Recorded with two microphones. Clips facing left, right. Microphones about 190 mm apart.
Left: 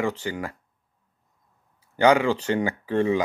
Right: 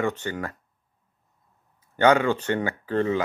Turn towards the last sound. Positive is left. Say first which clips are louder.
# left 2 dB
turn(degrees=10)  # may be behind; listen again after turning